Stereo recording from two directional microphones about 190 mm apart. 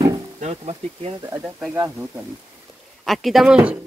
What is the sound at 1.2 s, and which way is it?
Speech, 10° right (ahead or behind).